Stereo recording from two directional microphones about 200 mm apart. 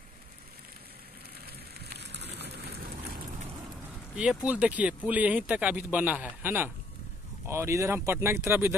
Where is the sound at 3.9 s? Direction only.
5° right (ahead or behind).